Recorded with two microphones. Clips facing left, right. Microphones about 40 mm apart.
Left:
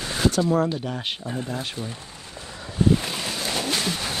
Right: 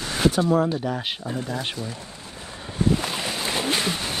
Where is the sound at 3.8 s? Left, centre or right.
Centre.